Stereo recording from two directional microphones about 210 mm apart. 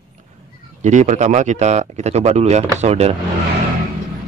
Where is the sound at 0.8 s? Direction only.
35° right (ahead or behind).